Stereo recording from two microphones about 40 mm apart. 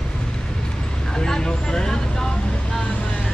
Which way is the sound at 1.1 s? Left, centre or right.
Centre.